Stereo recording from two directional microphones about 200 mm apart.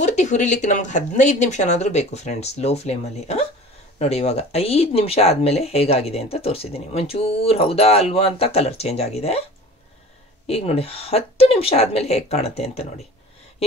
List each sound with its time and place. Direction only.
0.0 s speech: 35° left (ahead or behind)
10.4 s speech: 30° left (ahead or behind)